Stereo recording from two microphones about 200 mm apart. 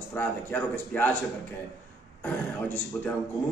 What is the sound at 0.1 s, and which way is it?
Speech, 10° left (ahead or behind).